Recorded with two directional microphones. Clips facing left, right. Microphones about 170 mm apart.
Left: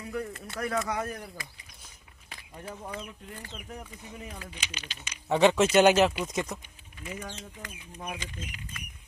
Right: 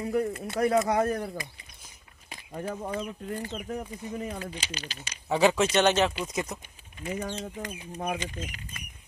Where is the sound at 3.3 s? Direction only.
30° right (ahead or behind).